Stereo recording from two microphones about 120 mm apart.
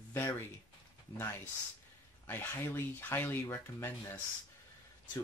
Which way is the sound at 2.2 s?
20° left (ahead or behind).